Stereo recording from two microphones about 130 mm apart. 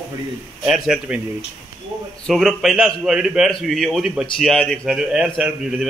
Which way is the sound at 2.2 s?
Centre (ahead or behind).